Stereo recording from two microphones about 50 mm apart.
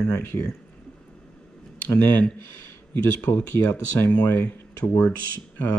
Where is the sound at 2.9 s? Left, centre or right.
Left.